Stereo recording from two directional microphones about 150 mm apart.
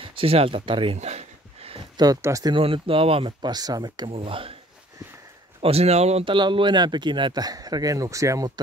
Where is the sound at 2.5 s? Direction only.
35° right (ahead or behind).